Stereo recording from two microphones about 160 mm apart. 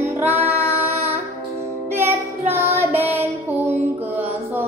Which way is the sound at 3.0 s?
10° right (ahead or behind).